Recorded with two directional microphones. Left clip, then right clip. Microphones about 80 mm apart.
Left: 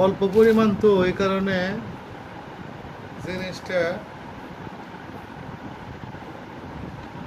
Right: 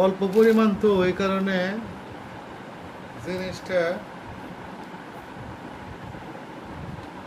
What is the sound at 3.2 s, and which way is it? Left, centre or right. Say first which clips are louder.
Speech: even; centre.